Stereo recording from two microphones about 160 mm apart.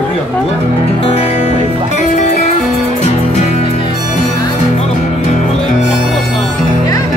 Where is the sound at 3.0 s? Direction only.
45° left (ahead or behind).